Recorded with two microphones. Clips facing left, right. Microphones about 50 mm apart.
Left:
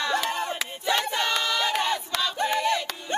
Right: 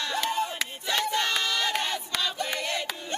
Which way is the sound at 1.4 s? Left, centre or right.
Centre.